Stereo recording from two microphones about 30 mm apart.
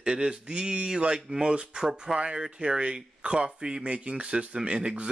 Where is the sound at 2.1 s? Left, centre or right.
Right.